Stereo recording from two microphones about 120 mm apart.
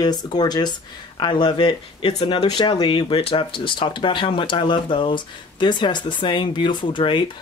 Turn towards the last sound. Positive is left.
turn(degrees=40)  # may be behind; listen again after turning